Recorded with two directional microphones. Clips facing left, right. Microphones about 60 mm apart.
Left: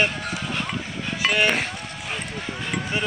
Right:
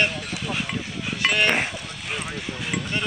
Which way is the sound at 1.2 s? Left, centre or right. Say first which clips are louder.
Even; centre.